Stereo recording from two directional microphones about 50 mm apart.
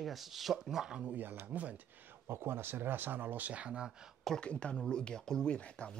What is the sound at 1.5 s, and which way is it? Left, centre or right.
Speech, right.